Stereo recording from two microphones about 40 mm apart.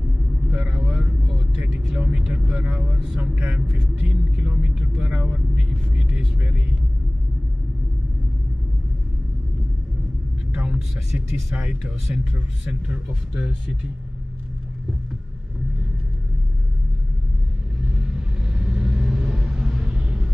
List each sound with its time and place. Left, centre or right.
0.5 s vehicle: right
0.7 s vehicle: right
3.2 s speech: right
11.1 s speech: right
17.7 s vehicle: right
20.0 s vehicle: right